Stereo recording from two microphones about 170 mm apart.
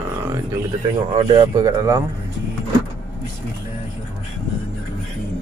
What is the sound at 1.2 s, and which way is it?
Speech, 25° right (ahead or behind).